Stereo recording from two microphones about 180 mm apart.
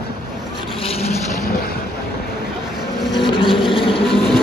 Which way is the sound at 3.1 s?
25° left (ahead or behind).